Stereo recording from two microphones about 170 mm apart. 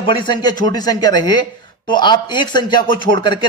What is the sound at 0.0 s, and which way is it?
Speech, 30° left (ahead or behind).